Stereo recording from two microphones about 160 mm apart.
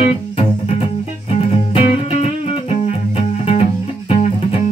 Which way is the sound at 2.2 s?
40° left (ahead or behind).